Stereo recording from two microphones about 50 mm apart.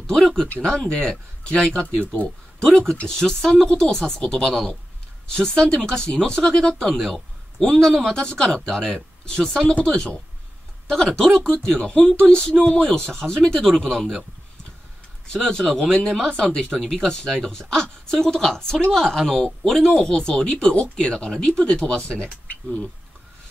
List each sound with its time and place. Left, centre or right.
0.0 s speech: centre
4.5 s speech: centre
5.2 s speech: centre
15.2 s speech: centre
15.6 s speech: centre